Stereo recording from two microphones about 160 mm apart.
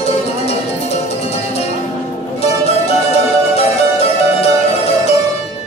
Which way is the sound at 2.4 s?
40° left (ahead or behind).